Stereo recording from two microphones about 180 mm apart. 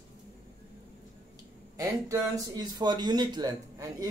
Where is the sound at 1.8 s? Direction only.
15° right (ahead or behind).